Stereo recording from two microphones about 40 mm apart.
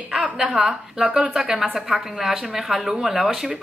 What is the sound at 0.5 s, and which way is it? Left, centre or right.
A woman's voice, centre.